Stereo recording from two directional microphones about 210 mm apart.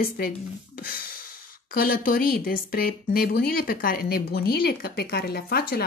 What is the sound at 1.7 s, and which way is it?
Speech, 45° left (ahead or behind).